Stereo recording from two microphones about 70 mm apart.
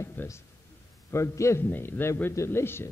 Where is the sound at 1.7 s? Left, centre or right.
Left.